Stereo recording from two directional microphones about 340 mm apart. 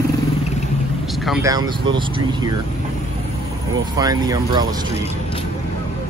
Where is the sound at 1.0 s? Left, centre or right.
Centre.